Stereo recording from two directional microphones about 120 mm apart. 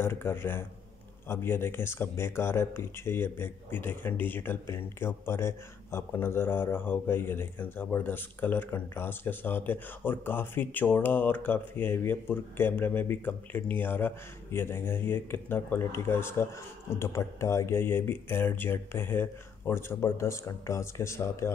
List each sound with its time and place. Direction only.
0.0 s speech: 20° left (ahead or behind)